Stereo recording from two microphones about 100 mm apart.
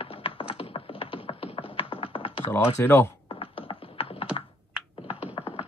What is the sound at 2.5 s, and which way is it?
Speech, 25° left (ahead or behind).